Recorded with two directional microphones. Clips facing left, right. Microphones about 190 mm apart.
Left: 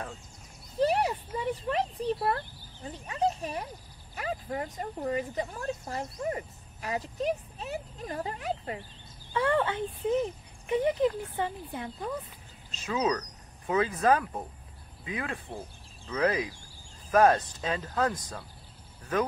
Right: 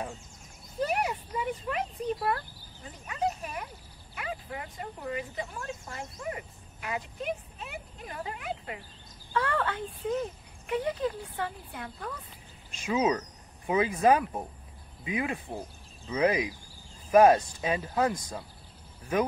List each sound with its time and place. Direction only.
0.7 s speech: 30° left (ahead or behind)
9.3 s speech: 20° left (ahead or behind)
12.7 s speech: 10° right (ahead or behind)